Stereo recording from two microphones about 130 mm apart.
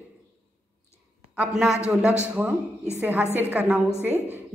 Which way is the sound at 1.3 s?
5° right (ahead or behind).